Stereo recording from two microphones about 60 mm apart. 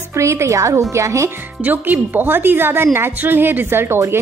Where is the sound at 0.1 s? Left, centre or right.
Right.